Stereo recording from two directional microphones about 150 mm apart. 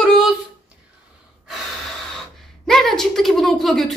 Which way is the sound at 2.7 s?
Centre (ahead or behind).